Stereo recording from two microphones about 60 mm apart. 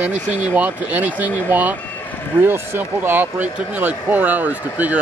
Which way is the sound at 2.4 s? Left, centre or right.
Right.